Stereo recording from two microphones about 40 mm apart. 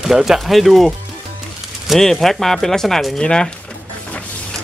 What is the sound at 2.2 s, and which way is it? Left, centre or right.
Speech, centre.